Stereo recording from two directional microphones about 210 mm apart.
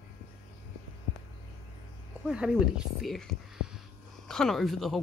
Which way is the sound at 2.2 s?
5° right (ahead or behind).